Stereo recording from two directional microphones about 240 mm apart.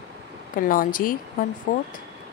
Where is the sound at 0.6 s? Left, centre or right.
Left.